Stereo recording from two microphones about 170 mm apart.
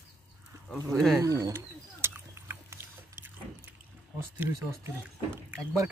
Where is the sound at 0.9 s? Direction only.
Centre (ahead or behind).